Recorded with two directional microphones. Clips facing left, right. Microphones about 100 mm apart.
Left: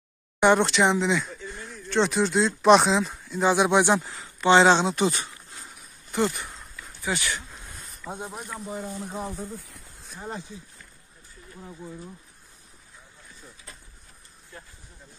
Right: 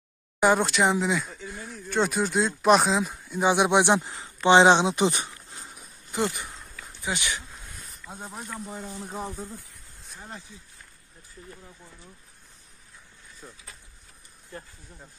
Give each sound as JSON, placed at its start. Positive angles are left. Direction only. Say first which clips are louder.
{"t": 0.4, "sound": "speech", "louder": "left 2 dB", "side_deg": -5}
{"t": 7.0, "sound": "speech", "louder": "left 2 dB", "side_deg": -20}
{"t": 8.1, "sound": "speech", "louder": "left 5 dB", "side_deg": 15}
{"t": 8.4, "sound": "speech", "louder": "left 2 dB", "side_deg": 5}